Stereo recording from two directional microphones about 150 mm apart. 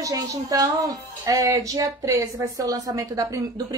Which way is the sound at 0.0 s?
25° right (ahead or behind).